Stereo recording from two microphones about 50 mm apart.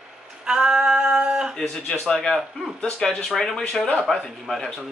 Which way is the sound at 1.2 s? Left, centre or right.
Centre.